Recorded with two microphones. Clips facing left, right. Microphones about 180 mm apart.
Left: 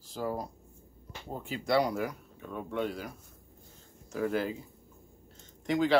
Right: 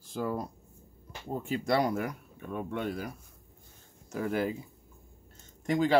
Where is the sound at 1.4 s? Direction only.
45° right (ahead or behind).